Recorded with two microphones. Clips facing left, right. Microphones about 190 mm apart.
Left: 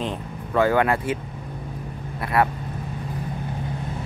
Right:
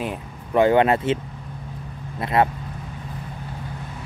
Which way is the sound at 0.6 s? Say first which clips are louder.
Right 3 dB; 20° right (ahead or behind).